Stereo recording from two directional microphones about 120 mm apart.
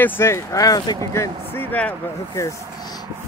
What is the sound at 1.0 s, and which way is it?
Speech, 25° left (ahead or behind).